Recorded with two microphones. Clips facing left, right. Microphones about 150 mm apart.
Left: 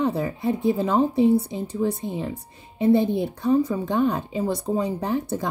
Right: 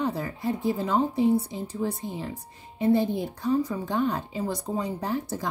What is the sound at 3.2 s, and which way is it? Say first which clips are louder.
Speech: left 5 dB; 65° left (ahead or behind).